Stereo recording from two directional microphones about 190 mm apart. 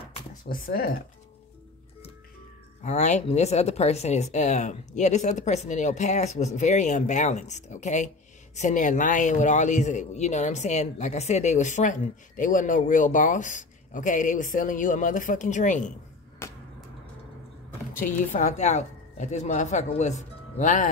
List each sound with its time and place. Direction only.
0.5 s speech: 50° left (ahead or behind)
2.8 s a man's voice: 40° left (ahead or behind)
16.4 s vehicle: 15° left (ahead or behind)
17.9 s a man's voice: 45° left (ahead or behind)